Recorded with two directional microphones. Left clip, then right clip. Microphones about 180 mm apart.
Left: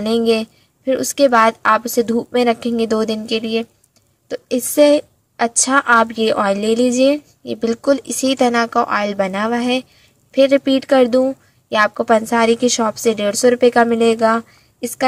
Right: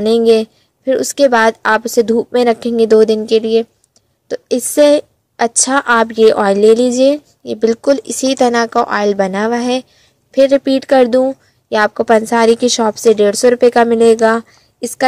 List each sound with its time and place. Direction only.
0.0 s a woman's voice: 50° right (ahead or behind)